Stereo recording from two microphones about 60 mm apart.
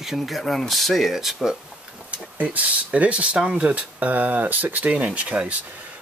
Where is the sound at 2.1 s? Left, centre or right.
Right.